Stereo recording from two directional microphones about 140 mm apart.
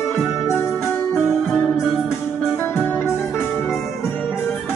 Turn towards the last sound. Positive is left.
turn(degrees=15)  # may be behind; listen again after turning